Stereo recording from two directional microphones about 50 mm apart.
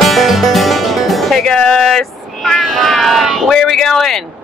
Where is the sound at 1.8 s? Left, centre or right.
Centre.